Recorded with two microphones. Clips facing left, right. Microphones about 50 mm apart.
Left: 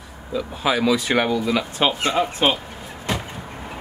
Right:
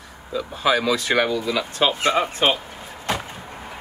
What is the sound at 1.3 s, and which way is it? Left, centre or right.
Speech, left.